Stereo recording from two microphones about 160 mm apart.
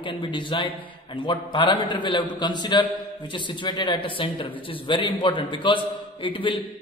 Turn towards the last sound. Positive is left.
turn(degrees=30)  # may be behind; listen again after turning